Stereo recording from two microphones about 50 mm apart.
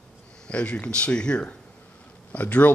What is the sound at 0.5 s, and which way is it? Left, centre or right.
Speech, left.